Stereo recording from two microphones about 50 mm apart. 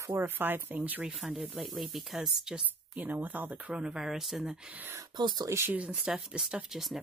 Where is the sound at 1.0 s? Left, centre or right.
Centre.